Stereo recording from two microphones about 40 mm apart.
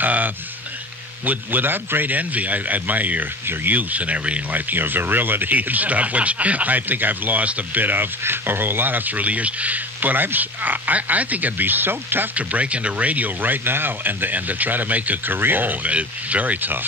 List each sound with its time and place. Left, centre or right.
0.0 s a sound: right
1.2 s speech: right
4.5 s speech: right
7.4 s speech: right
7.8 s speech: right
8.2 s speech: right
12.4 s speech: right
15.3 s speech: right
15.9 s speech: right